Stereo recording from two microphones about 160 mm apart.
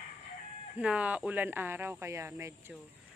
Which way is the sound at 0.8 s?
10° right (ahead or behind).